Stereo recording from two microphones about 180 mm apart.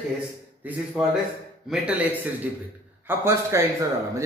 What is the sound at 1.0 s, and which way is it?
A man's voice, 5° right (ahead or behind).